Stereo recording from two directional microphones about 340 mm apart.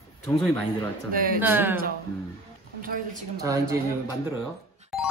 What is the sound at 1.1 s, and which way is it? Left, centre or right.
Speech, right.